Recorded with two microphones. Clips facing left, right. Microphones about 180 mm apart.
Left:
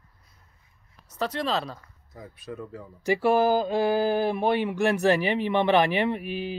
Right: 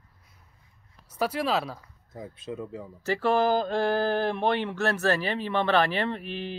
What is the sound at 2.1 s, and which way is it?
Speech, 25° right (ahead or behind).